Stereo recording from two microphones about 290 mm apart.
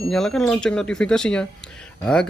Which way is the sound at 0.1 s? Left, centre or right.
Centre.